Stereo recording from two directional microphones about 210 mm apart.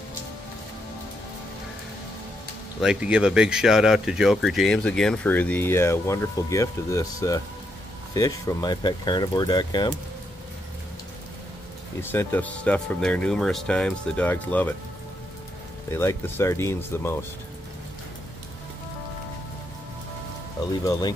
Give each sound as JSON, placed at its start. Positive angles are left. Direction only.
{"t": 2.8, "sound": "speech", "side_deg": -5}
{"t": 12.0, "sound": "speech", "side_deg": 10}
{"t": 15.9, "sound": "speech", "side_deg": 10}
{"t": 20.8, "sound": "speech", "side_deg": 15}